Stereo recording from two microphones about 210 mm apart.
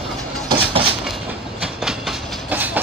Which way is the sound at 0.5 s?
25° right (ahead or behind).